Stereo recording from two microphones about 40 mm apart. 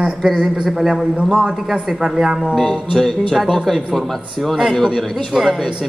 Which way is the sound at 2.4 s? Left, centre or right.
Centre.